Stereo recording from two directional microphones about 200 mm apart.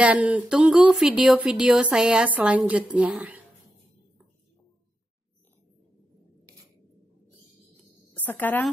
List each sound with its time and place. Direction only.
0.0 s speech: 5° right (ahead or behind)
8.3 s speech: 10° left (ahead or behind)